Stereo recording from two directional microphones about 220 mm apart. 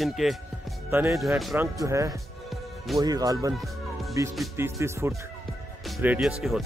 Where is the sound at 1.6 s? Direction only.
15° right (ahead or behind).